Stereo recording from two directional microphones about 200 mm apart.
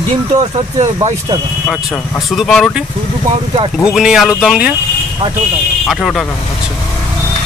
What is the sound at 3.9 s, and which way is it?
Speech, 5° right (ahead or behind).